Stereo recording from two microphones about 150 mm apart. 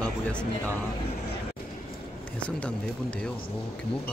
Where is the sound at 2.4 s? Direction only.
5° left (ahead or behind).